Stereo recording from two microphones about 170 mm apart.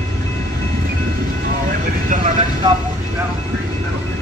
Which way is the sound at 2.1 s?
40° right (ahead or behind).